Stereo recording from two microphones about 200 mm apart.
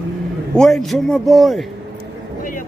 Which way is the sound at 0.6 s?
Centre (ahead or behind).